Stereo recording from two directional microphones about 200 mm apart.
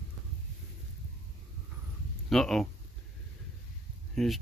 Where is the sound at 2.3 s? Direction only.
Centre (ahead or behind).